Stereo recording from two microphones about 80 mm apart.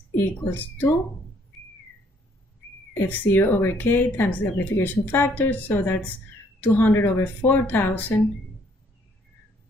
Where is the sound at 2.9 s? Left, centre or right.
Left.